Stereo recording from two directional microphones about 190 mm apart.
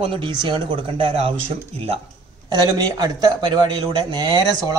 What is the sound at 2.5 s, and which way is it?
Speech, 20° right (ahead or behind).